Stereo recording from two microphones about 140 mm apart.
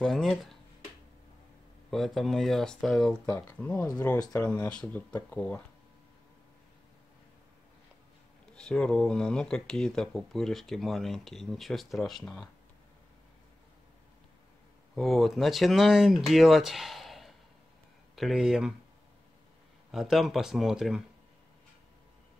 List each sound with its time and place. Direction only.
0.0 s speech: centre (ahead or behind)
1.9 s speech: centre (ahead or behind)
4.2 s speech: 25° left (ahead or behind)
4.6 s speech: 10° left (ahead or behind)
8.5 s speech: 5° left (ahead or behind)
15.0 s speech: centre (ahead or behind)
19.9 s speech: centre (ahead or behind)